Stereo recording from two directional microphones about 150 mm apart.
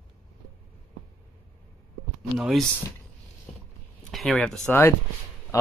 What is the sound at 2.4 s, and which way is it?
Speech, centre (ahead or behind).